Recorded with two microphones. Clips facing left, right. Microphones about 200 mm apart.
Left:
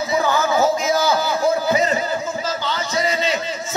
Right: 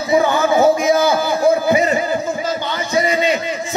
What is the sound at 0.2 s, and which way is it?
Music, 20° right (ahead or behind).